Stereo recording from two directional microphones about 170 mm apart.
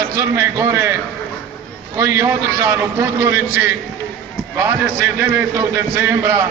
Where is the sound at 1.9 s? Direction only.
15° right (ahead or behind).